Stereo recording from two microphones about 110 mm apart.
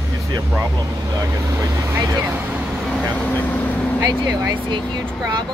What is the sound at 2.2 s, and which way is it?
Speech, 15° right (ahead or behind).